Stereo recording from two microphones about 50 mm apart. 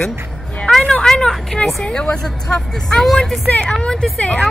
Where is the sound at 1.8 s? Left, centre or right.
Centre.